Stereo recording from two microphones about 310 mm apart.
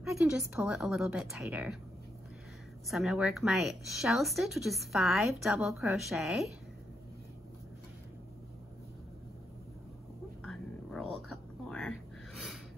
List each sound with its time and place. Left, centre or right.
0.2 s speech: centre
2.9 s speech: centre
10.4 s cat: centre